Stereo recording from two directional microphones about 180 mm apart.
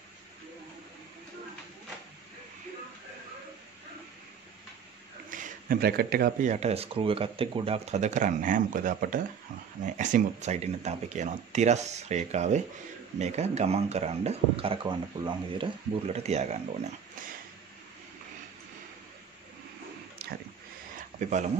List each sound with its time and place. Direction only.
5.3 s speech: 50° right (ahead or behind)
20.2 s a sound: 55° right (ahead or behind)
21.2 s speech: 40° right (ahead or behind)